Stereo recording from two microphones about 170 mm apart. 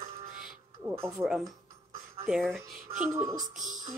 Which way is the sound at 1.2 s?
5° right (ahead or behind).